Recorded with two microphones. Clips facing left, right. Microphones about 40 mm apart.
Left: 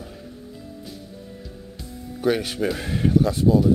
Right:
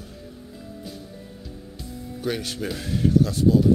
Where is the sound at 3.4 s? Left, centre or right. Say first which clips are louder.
Even; centre.